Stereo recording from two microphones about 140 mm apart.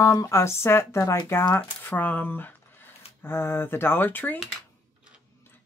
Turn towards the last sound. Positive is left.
turn(degrees=15)  # may be behind; listen again after turning